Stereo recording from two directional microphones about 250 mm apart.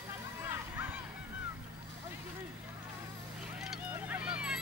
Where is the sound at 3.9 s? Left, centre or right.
Centre.